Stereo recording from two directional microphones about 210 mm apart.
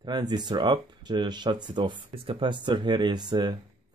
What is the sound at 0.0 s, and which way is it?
Speech, 20° right (ahead or behind).